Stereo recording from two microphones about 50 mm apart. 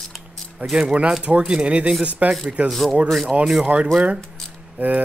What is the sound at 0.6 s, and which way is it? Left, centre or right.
Speech, right.